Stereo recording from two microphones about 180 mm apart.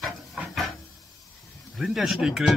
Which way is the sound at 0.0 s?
Centre (ahead or behind).